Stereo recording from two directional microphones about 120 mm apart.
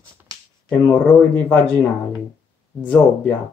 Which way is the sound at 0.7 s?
15° left (ahead or behind).